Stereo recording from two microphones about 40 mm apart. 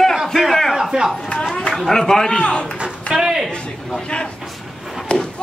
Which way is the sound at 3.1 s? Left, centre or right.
Centre.